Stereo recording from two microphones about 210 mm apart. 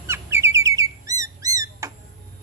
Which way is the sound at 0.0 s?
10° right (ahead or behind).